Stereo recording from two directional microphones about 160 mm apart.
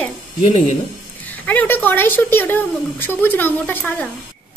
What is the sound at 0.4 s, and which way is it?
Speech, 45° left (ahead or behind).